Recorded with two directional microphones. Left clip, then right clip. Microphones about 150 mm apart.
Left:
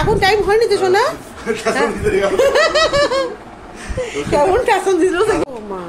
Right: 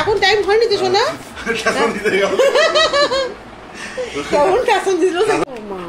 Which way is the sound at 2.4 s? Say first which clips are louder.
Even; 5° left (ahead or behind).